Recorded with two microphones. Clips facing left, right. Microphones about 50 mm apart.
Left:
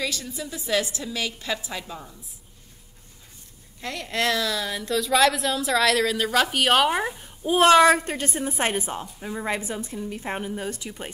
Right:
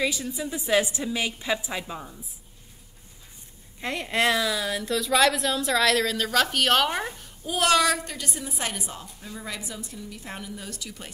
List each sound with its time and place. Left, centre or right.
0.0 s a woman's voice: centre
3.8 s a woman's voice: right
4.6 s a woman's voice: centre
7.2 s a woman's voice: left